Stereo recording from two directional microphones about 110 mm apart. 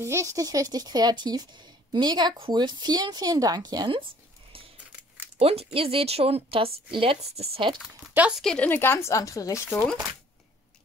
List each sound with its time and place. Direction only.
0.0 s speech: 25° right (ahead or behind)
5.4 s speech: 65° right (ahead or behind)
8.2 s speech: 20° right (ahead or behind)
8.5 s speech: 15° left (ahead or behind)